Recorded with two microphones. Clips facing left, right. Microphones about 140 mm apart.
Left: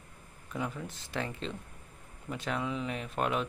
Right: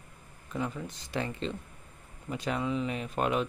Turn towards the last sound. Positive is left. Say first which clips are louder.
# right 2 dB
turn(degrees=0)  # may be behind; listen again after turning